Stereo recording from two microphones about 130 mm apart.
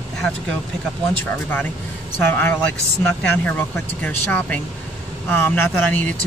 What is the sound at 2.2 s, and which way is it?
Speech, 15° left (ahead or behind).